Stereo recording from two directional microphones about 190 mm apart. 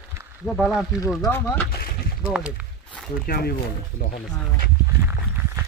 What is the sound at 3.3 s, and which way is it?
Speech, 55° left (ahead or behind).